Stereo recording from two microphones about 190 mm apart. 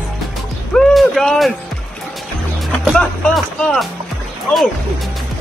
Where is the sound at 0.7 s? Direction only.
Centre (ahead or behind).